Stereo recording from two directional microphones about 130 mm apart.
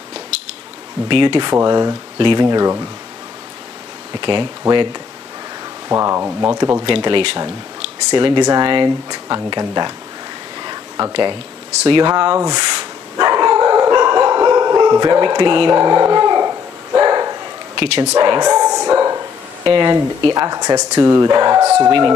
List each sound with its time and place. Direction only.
1.0 s speech: 40° right (ahead or behind)
1.5 s speech: 25° right (ahead or behind)
4.1 s speech: 40° right (ahead or behind)
5.9 s speech: 20° right (ahead or behind)
6.8 s speech: 35° right (ahead or behind)
10.6 s a sound: 35° right (ahead or behind)
11.8 s speech: 40° right (ahead or behind)
12.1 s dog: 25° right (ahead or behind)
16.9 s bow-wow: 30° right (ahead or behind)
17.7 s speech: 40° right (ahead or behind)
18.1 s dog: 30° right (ahead or behind)
19.6 s speech: 35° right (ahead or behind)